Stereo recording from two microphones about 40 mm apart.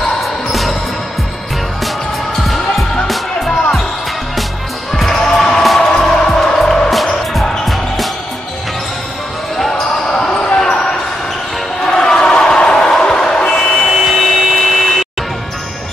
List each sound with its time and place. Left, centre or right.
0.5 s music: centre
5.1 s music: centre
7.6 s music: centre
10.0 s basketball bounce: left
11.9 s basketball bounce: centre
13.5 s vehicle: centre